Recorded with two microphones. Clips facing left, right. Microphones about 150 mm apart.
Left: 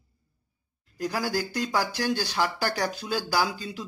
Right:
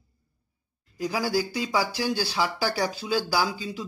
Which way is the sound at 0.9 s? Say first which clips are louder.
Right 2 dB; 5° right (ahead or behind).